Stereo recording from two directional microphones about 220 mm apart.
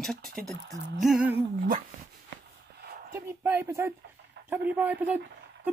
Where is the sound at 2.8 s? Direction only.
45° right (ahead or behind).